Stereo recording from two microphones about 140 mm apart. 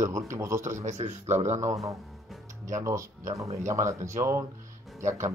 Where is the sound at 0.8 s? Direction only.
50° right (ahead or behind).